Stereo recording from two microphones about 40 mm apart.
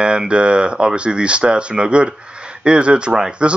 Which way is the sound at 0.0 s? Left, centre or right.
Right.